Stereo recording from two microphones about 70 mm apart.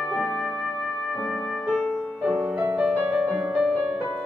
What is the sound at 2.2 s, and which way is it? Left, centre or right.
Music, centre.